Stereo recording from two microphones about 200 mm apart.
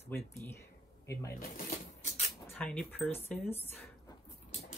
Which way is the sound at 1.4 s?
45° left (ahead or behind).